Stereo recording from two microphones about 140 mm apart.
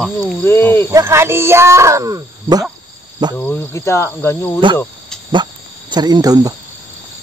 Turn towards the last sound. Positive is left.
turn(degrees=-25)  # may be behind; listen again after turning